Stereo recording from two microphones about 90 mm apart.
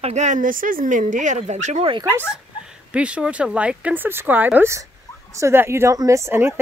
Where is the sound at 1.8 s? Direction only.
70° right (ahead or behind).